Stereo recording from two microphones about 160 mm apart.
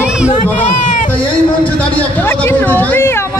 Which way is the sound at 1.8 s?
10° left (ahead or behind).